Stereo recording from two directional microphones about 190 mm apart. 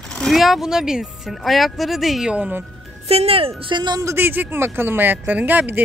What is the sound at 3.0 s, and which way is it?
Speech, 30° right (ahead or behind).